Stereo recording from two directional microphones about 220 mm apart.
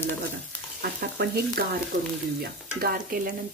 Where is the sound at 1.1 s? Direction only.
45° right (ahead or behind).